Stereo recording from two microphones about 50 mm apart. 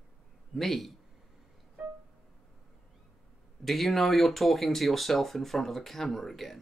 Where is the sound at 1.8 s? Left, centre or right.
Centre.